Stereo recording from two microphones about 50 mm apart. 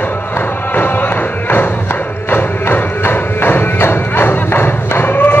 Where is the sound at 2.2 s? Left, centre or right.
Left.